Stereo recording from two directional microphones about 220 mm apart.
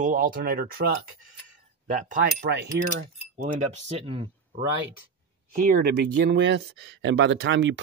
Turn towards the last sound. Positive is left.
turn(degrees=-55)  # may be behind; listen again after turning